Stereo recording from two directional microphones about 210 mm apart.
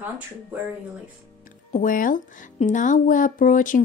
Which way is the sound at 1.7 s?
40° left (ahead or behind).